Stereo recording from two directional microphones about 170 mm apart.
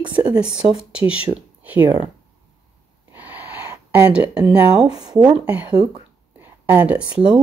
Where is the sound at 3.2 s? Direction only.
10° right (ahead or behind).